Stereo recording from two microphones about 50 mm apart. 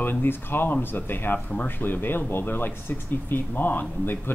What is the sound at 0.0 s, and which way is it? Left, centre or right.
Speech, left.